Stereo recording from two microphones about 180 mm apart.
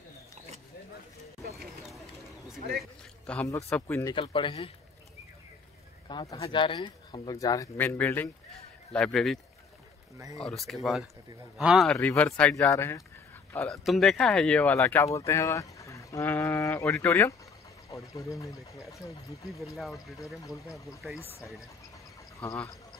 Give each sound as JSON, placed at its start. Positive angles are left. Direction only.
{"t": 2.8, "sound": "a sound", "side_deg": 5}
{"t": 3.7, "sound": "speech", "side_deg": 15}
{"t": 4.2, "sound": "speech", "side_deg": 30}
{"t": 6.0, "sound": "speech", "side_deg": 20}
{"t": 10.4, "sound": "speech", "side_deg": 0}
{"t": 13.7, "sound": "speech", "side_deg": 0}
{"t": 22.4, "sound": "speech", "side_deg": 10}